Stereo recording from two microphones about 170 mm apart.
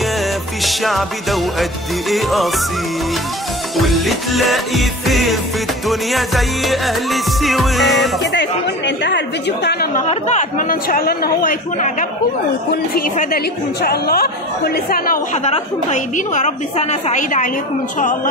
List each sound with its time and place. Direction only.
0.7 s music: centre (ahead or behind)
3.7 s music: centre (ahead or behind)
8.2 s a woman's voice: 90° left
9.9 s speech: 45° left (ahead or behind); by 11.5 s 60° left (ahead or behind)
12.9 s speech: 60° left (ahead or behind)
15.4 s a woman's voice: 40° left (ahead or behind)